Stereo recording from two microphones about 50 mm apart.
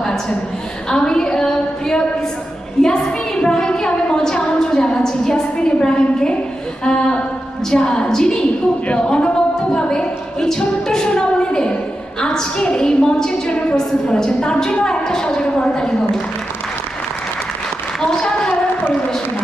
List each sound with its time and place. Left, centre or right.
0.8 s a woman's voice: centre
3.0 s a sound: centre
7.7 s a woman's voice: centre
9.0 s music: centre
14.0 s a woman's voice: centre
18.1 s a sound: centre